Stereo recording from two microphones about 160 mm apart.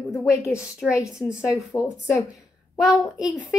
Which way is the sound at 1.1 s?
20° left (ahead or behind).